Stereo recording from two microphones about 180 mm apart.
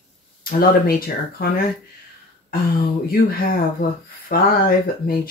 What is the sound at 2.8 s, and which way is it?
Speech, 55° left (ahead or behind).